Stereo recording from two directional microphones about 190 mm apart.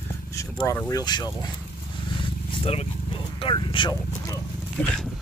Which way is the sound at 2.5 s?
30° left (ahead or behind).